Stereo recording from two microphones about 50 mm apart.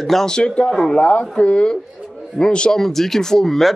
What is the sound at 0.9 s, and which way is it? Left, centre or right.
A man's voice, left.